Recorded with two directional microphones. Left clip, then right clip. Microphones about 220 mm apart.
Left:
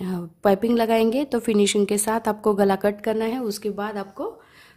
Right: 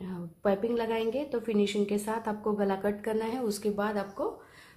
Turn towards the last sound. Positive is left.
turn(degrees=30)  # may be behind; listen again after turning